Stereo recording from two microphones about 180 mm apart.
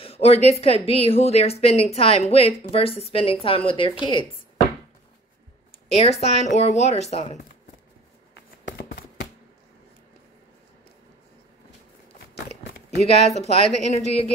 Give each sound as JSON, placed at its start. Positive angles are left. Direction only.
{"t": 0.0, "sound": "a woman's voice", "side_deg": 35}
{"t": 5.9, "sound": "a woman's voice", "side_deg": 35}
{"t": 8.4, "sound": "a sound", "side_deg": 70}
{"t": 13.0, "sound": "a woman's voice", "side_deg": 35}